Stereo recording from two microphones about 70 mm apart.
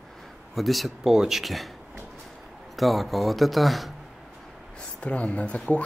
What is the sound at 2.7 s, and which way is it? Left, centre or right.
Speech, centre.